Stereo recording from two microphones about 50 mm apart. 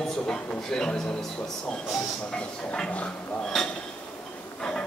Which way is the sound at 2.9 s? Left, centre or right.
Left.